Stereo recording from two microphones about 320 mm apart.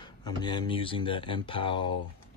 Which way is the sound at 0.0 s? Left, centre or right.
Centre.